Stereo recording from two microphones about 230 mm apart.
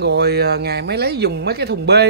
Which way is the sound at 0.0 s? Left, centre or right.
Right.